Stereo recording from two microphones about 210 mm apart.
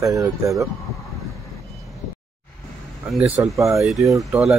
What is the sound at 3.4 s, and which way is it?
Speech, 15° right (ahead or behind).